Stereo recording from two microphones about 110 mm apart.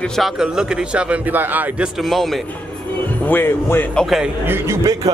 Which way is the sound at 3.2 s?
20° left (ahead or behind).